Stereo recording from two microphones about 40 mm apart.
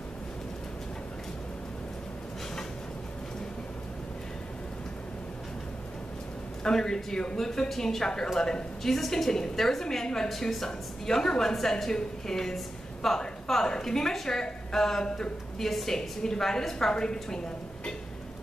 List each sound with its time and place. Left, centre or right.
6.6 s a woman's voice: centre
8.9 s a woman's voice: centre